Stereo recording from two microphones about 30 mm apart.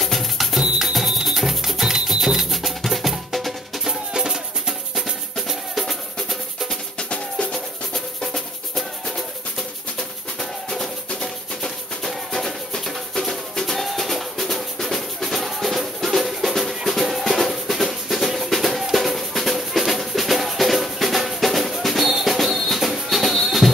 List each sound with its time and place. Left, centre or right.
0.0 s music: centre
3.8 s music: right
9.9 s music: centre
13.7 s music: centre